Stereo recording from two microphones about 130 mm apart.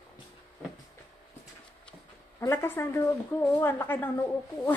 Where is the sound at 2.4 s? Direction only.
20° left (ahead or behind).